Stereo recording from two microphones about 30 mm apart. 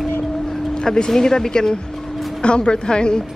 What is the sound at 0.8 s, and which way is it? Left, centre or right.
Speech, centre.